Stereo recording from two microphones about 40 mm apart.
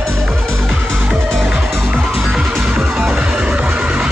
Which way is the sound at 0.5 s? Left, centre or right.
Centre.